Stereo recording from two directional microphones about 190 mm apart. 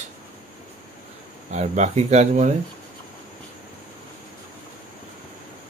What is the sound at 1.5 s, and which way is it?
Speech, 40° right (ahead or behind).